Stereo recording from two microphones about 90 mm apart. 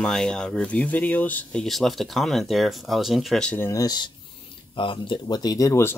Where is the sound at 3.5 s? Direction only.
30° left (ahead or behind).